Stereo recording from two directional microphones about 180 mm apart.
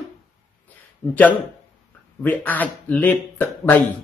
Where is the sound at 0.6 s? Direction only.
10° left (ahead or behind).